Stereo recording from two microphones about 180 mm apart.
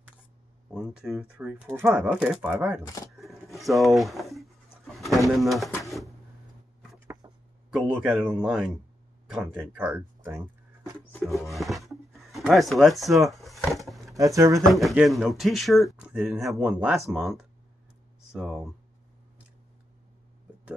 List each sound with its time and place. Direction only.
0.7 s speech: 5° right (ahead or behind)
2.8 s speech: 20° left (ahead or behind)
3.1 s a sound: centre (ahead or behind)
4.9 s bird: centre (ahead or behind)
7.7 s speech: 5° right (ahead or behind)
11.2 s speech: centre (ahead or behind)
13.3 s a sound: centre (ahead or behind)
14.1 s speech: 20° right (ahead or behind)
14.6 s speech: centre (ahead or behind)